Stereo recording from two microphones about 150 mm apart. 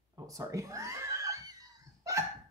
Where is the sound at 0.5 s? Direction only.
20° right (ahead or behind).